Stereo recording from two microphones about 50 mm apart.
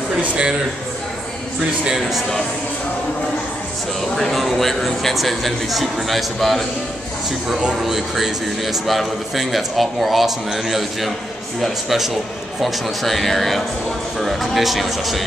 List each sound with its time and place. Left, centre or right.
0.2 s a man's voice: right
1.9 s speech: centre
4.2 s a man's voice: centre
7.8 s a man's voice: centre